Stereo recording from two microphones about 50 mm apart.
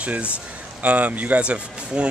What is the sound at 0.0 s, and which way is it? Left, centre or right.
Speech, right.